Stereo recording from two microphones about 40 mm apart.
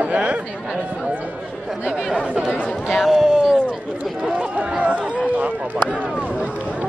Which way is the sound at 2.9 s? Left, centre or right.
Centre.